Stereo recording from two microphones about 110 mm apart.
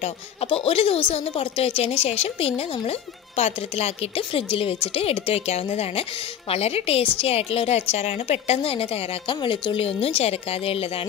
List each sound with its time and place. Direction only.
0.0 s a woman's voice: 60° left (ahead or behind)